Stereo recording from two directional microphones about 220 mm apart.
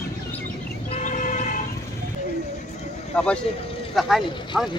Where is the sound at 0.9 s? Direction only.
35° left (ahead or behind).